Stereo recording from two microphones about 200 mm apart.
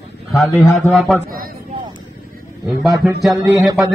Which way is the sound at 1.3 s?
45° right (ahead or behind).